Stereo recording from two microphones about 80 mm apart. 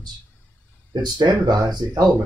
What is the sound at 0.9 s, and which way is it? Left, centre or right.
Speech, right.